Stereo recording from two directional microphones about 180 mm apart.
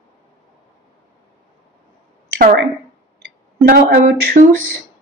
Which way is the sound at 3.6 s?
50° right (ahead or behind).